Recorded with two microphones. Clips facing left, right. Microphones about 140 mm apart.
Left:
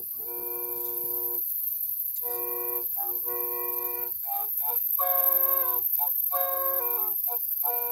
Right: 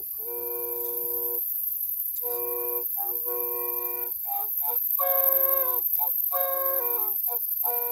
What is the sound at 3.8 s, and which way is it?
Music, 35° right (ahead or behind).